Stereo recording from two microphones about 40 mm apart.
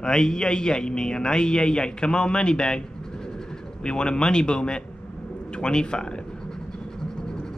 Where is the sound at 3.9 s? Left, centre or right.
Left.